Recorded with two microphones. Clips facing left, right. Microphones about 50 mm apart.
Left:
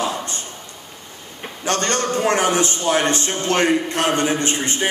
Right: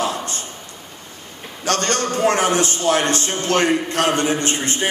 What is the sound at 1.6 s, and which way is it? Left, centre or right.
A man's voice, left.